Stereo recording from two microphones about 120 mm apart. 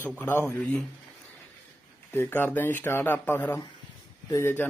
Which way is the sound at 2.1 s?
15° left (ahead or behind).